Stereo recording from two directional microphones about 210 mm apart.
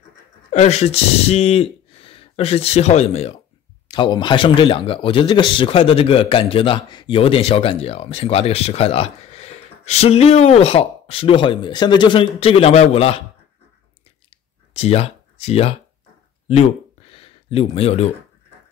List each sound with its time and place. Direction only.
0.5 s speech: 30° left (ahead or behind)
14.7 s speech: 30° left (ahead or behind)
17.1 s a sound: 25° left (ahead or behind)